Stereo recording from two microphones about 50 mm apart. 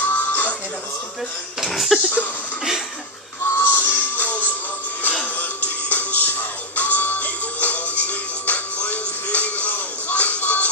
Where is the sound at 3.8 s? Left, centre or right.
Left.